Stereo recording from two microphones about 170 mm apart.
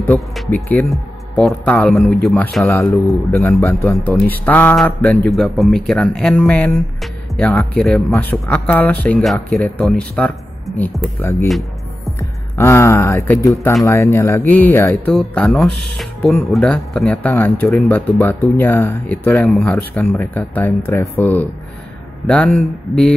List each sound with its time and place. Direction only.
0.0 s a man's voice: 10° left (ahead or behind)
15.1 s speech: 5° left (ahead or behind)